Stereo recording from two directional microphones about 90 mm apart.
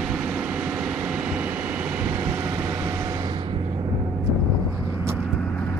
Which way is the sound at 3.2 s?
60° right (ahead or behind).